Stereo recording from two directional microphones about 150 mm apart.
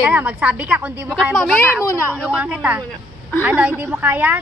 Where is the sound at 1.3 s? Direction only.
5° left (ahead or behind).